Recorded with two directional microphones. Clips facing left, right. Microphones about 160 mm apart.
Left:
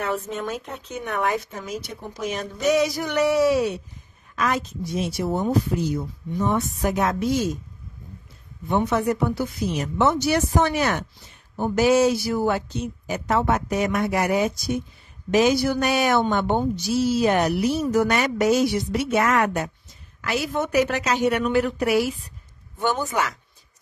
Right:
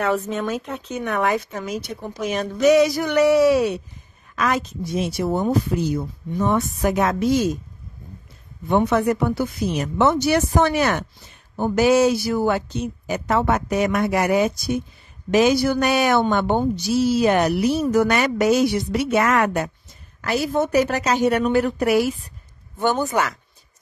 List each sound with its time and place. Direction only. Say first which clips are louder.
0.0 s a woman's voice: right 5 dB; 90° right
2.2 s speech: right 6 dB; 80° right
8.6 s speech: right 3 dB; 65° right (ahead or behind)
20.2 s a woman's voice: right 4 dB; 40° right (ahead or behind)